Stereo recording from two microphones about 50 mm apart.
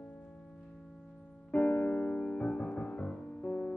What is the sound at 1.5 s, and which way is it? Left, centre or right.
Music, left.